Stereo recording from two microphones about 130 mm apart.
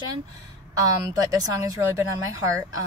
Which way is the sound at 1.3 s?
25° right (ahead or behind).